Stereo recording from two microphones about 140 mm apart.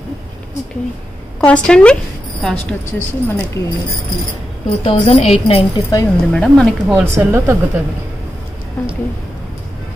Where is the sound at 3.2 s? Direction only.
15° left (ahead or behind).